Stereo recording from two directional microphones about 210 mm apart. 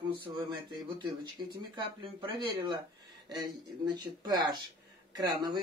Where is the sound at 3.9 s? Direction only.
20° right (ahead or behind).